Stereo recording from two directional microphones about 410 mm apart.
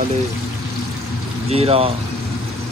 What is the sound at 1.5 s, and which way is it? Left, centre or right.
Speech, centre.